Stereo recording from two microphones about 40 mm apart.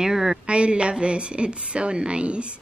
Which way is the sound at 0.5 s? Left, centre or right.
Right.